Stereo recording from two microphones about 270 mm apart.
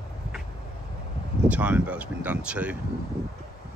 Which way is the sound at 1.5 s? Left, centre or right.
Centre.